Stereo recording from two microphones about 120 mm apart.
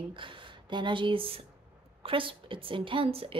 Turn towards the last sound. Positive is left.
turn(degrees=-50)  # may be behind; listen again after turning